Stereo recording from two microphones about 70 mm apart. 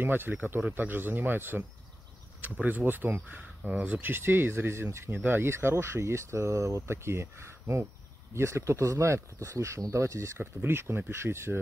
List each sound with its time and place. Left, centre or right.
0.0 s speech: right
10.4 s speech: right